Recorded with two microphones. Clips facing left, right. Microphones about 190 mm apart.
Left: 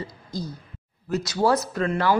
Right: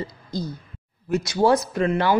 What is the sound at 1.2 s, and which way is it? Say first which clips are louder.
Speech: right 3 dB; 20° right (ahead or behind).